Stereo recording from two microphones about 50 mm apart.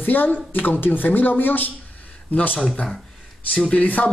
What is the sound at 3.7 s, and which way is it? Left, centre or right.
Speech, left.